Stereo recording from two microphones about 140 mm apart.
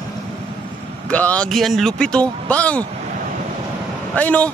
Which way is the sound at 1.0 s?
10° left (ahead or behind).